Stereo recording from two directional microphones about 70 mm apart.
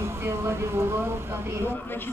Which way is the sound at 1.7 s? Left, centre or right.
Left.